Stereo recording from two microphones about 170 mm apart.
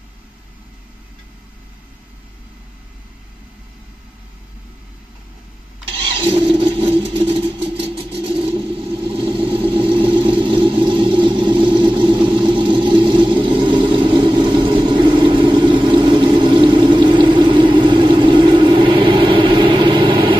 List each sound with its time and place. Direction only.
5.9 s vehicle: 30° right (ahead or behind)